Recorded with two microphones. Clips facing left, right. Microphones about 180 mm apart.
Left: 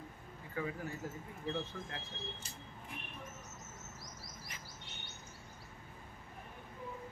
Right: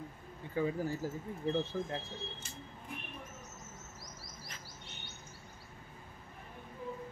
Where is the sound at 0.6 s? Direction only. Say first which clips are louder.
Right 7 dB; 30° right (ahead or behind).